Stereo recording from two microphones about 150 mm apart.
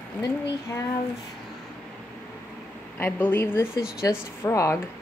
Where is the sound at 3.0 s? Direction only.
15° left (ahead or behind).